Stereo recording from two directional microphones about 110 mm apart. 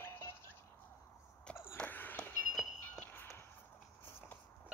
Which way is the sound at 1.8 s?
15° left (ahead or behind).